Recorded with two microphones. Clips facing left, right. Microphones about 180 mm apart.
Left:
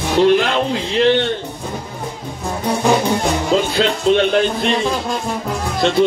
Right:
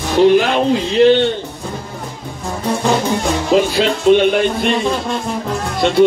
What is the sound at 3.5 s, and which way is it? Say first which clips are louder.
A man's voice: right 4 dB; 10° right (ahead or behind).